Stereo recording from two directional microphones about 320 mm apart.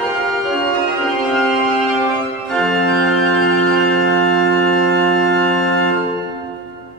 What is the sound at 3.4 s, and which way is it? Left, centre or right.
Organ, left.